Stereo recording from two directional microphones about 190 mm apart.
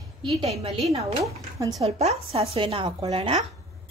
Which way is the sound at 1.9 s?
35° right (ahead or behind).